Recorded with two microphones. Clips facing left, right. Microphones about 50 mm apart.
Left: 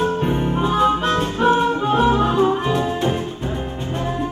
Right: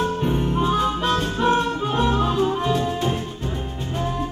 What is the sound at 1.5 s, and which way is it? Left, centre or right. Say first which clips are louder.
Music: left 4 dB; left.